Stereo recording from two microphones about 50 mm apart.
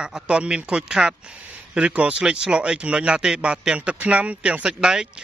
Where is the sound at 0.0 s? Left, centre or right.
Centre.